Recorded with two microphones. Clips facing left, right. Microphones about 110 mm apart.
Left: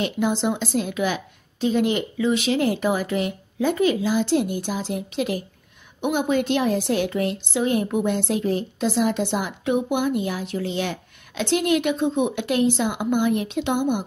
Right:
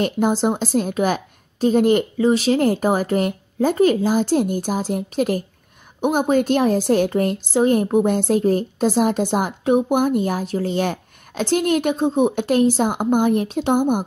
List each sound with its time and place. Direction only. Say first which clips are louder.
0.0 s a woman's voice: right 4 dB; 45° right (ahead or behind)